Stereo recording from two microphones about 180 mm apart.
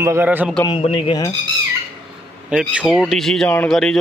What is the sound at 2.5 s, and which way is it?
Speech, 5° right (ahead or behind).